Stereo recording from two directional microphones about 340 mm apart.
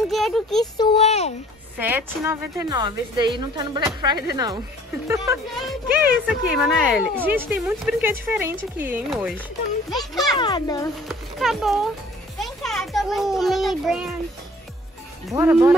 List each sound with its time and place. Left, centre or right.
0.1 s speech: centre
0.7 s a child's voice: centre
1.8 s a woman's voice: centre
10.3 s a child's voice: centre
11.1 s a woman's voice: centre
15.2 s a woman's voice: centre